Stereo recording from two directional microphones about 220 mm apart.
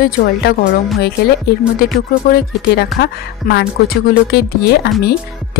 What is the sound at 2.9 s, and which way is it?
Speech, 45° left (ahead or behind).